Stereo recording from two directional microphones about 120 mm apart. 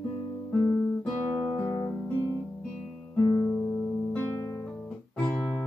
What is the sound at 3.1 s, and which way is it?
Music, 15° left (ahead or behind).